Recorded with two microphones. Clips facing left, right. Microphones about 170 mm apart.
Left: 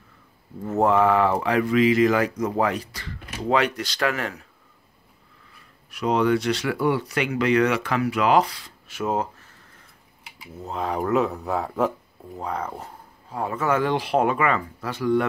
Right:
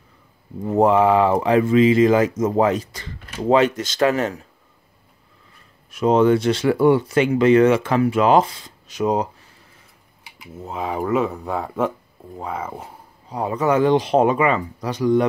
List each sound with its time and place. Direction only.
0.7 s speech: 15° right (ahead or behind)
5.9 s speech: 25° right (ahead or behind)
10.6 s speech: centre (ahead or behind)
13.3 s speech: 15° right (ahead or behind)